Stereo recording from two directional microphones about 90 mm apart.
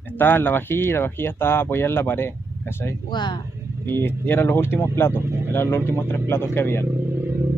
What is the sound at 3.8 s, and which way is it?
Speech, 25° left (ahead or behind).